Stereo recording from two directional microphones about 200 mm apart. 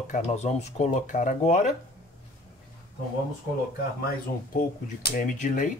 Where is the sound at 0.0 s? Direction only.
35° left (ahead or behind).